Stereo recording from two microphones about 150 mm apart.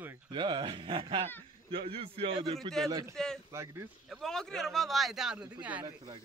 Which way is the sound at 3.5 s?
20° right (ahead or behind).